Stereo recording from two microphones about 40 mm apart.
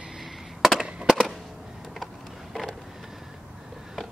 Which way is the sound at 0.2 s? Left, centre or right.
Centre.